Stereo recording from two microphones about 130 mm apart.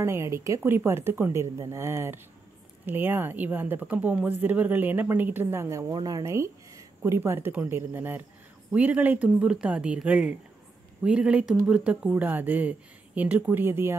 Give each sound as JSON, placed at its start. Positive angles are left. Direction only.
{"t": 0.0, "sound": "speech", "side_deg": -20}